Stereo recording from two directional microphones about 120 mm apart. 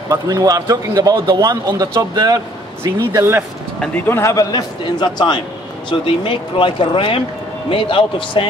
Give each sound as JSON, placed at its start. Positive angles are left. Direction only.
{"t": 0.1, "sound": "a man's voice", "side_deg": -30}
{"t": 3.1, "sound": "speech", "side_deg": -20}
{"t": 4.1, "sound": "a man's voice", "side_deg": 25}